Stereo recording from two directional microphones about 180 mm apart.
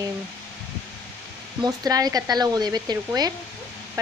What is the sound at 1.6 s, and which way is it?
Speech, 20° right (ahead or behind).